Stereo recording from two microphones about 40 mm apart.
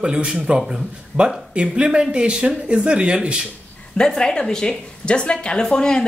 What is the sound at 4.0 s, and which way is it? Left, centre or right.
Speech, centre.